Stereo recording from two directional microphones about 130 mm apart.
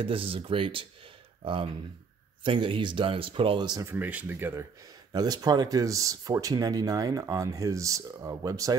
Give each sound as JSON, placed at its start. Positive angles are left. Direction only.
{"t": 0.0, "sound": "speech", "side_deg": -45}
{"t": 3.8, "sound": "speech", "side_deg": -15}
{"t": 5.1, "sound": "speech", "side_deg": -30}